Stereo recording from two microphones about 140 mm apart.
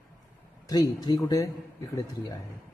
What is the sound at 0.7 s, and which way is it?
Speech, 25° left (ahead or behind).